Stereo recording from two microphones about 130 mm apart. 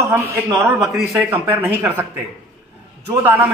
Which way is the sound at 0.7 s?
Centre (ahead or behind).